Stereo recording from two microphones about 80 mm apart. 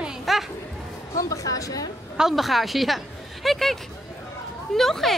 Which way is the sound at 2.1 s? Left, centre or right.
Centre.